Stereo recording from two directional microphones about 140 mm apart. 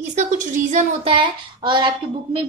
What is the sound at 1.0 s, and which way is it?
Speech, 35° right (ahead or behind).